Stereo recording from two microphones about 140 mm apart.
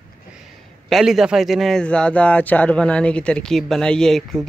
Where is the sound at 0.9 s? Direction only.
Centre (ahead or behind).